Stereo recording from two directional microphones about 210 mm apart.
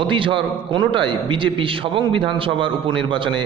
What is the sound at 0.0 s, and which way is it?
A man's voice, 25° right (ahead or behind).